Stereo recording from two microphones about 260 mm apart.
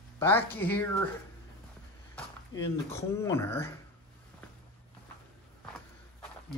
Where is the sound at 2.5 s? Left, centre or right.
Centre.